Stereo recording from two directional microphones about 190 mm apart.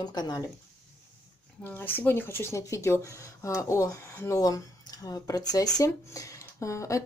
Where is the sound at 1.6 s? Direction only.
10° left (ahead or behind).